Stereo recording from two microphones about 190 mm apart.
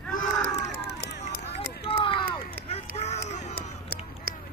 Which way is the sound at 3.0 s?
35° left (ahead or behind).